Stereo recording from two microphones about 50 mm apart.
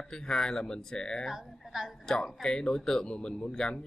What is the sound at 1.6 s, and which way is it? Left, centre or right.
Speech, centre.